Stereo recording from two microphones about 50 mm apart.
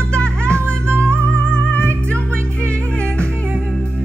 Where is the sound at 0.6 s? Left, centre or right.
Right.